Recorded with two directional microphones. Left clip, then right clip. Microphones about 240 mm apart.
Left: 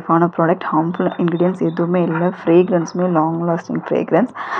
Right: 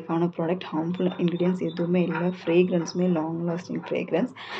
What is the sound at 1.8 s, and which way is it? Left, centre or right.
Speech, centre.